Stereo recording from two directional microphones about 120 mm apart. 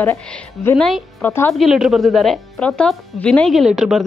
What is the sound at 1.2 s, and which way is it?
Speech, 20° left (ahead or behind).